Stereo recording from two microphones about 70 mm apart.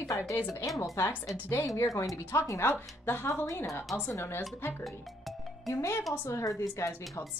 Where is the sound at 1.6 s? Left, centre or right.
Left.